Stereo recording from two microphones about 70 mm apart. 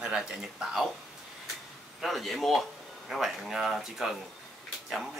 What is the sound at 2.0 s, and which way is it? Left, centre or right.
Speech, centre.